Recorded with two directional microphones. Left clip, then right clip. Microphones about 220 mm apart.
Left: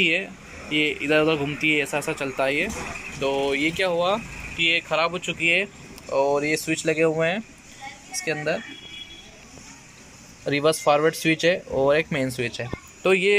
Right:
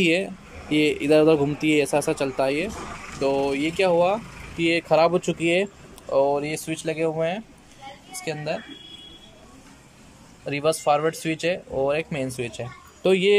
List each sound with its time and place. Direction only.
0.0 s speech: 15° right (ahead or behind)
4.6 s speech: 25° right (ahead or behind)
6.1 s speech: 5° right (ahead or behind)
10.4 s speech: centre (ahead or behind)